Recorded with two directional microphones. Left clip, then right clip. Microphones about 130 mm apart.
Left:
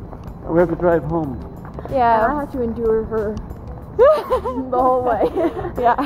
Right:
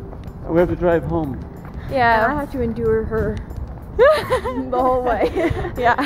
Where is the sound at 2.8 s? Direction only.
30° right (ahead or behind).